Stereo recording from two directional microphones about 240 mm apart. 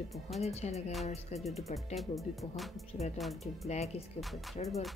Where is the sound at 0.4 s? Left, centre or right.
Left.